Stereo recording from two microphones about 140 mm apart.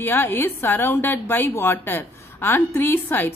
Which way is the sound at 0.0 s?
15° left (ahead or behind).